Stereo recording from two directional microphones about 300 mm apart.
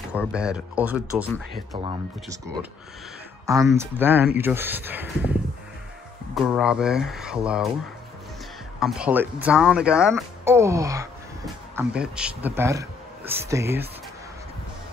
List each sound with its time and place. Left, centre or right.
0.1 s speech: centre
1.7 s speech: centre
6.3 s speech: centre
8.7 s a man's voice: centre